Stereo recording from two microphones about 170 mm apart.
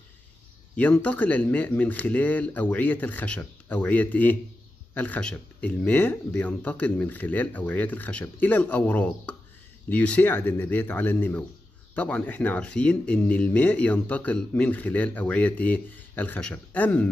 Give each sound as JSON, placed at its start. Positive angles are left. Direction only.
{"t": 0.7, "sound": "speech", "side_deg": 10}